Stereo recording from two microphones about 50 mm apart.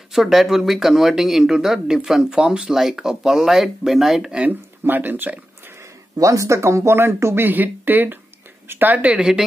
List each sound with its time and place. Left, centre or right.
0.1 s speech: centre
4.5 s speech: right
5.8 s speech: right
7.3 s speech: right